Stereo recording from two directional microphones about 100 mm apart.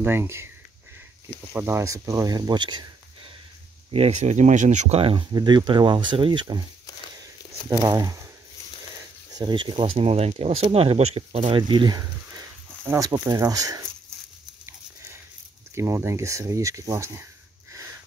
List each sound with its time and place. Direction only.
0.0 s speech: 25° right (ahead or behind)
1.5 s speech: 20° right (ahead or behind); by 2.9 s 50° right (ahead or behind)
4.2 s speech: 90° right
4.8 s speech: 80° right
5.3 s speech: 45° right (ahead or behind)
7.8 s speech: 40° right (ahead or behind)
9.3 s speech: 50° right (ahead or behind)
12.8 s speech: 35° right (ahead or behind)
15.7 s speech: 25° right (ahead or behind)